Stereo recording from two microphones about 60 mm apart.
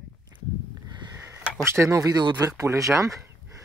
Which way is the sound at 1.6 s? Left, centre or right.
Right.